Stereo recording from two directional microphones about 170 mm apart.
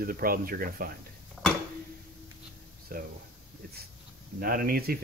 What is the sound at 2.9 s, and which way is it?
Speech, 60° right (ahead or behind).